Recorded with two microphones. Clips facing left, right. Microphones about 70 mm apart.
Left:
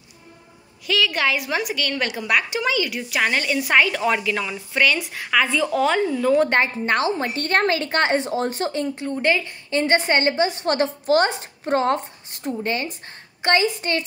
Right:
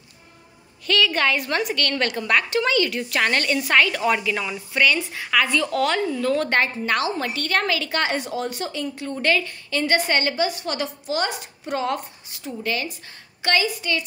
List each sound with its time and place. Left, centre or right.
0.8 s a woman's voice: centre
6.5 s a woman's voice: left